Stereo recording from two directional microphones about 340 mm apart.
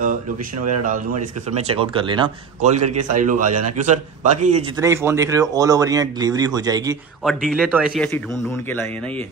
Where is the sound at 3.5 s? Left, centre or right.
Right.